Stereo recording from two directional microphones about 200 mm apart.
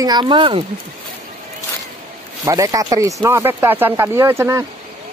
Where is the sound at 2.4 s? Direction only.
15° right (ahead or behind).